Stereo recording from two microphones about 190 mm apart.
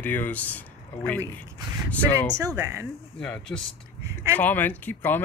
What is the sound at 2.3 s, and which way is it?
Speech, 15° right (ahead or behind).